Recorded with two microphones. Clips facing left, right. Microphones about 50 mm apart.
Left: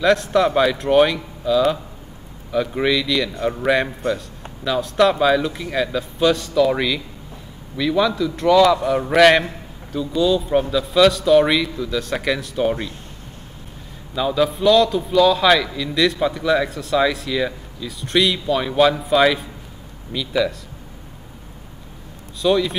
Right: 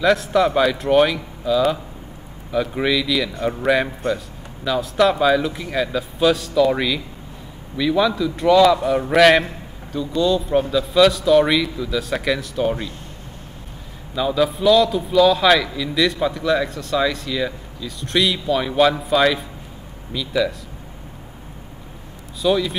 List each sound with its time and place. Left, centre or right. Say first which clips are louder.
0.0 s a man's voice: even; centre
14.1 s a man's voice: even; centre
22.4 s a man's voice: left 1 dB; centre